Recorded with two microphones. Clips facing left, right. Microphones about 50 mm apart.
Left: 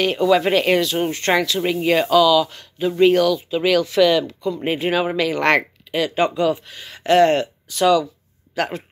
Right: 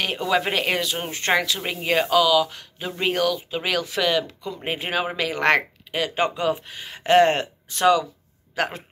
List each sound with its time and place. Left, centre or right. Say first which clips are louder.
0.0 s speech: left 6 dB; centre; by 8.1 s right
8.5 s speech: left 2 dB; centre